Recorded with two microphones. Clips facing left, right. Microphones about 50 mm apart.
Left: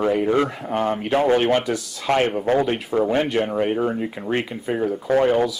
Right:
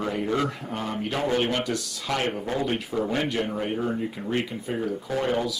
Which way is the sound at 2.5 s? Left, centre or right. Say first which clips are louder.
Left 13 dB; left.